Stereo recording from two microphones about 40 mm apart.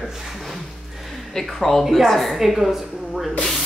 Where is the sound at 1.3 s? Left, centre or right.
Centre.